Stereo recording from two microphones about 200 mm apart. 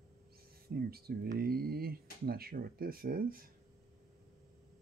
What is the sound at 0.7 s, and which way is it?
Speech, 50° right (ahead or behind).